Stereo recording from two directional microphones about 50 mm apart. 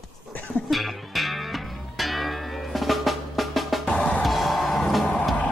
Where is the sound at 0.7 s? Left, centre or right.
Centre.